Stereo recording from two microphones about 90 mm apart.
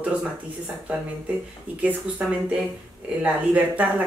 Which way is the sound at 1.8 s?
15° right (ahead or behind).